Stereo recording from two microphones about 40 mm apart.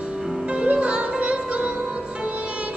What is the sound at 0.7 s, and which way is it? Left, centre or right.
Music, right.